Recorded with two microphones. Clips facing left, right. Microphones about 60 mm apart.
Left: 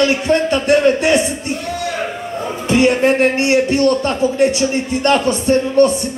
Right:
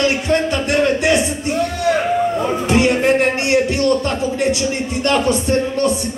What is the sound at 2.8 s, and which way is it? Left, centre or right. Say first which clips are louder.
Music: left 3 dB; left.